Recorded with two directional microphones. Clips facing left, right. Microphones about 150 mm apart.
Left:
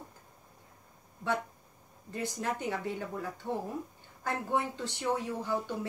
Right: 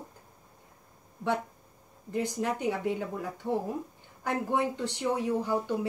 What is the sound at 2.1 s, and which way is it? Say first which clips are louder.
Speech: right 4 dB; 15° right (ahead or behind).